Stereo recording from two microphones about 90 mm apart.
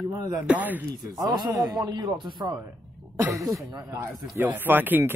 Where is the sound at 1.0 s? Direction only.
50° right (ahead or behind).